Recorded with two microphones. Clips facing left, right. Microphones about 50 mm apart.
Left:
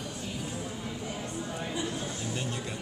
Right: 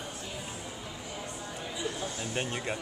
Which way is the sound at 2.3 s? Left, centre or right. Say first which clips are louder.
Right 2 dB; right.